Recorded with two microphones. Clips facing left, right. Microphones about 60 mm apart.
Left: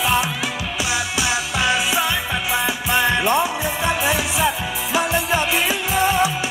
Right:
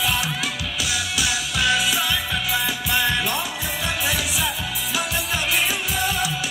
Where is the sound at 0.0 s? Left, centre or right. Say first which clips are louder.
Left 4 dB; left.